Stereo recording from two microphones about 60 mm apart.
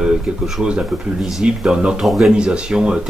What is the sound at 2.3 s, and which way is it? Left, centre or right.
Speech, centre.